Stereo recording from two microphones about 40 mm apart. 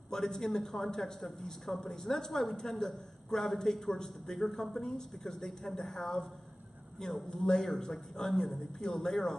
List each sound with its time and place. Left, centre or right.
0.1 s speech: centre